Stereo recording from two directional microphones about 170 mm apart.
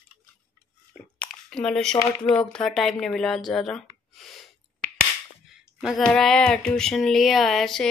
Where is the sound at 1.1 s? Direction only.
5° left (ahead or behind).